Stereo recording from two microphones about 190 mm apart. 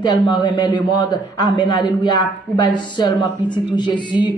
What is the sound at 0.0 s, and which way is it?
A man's voice, 25° left (ahead or behind).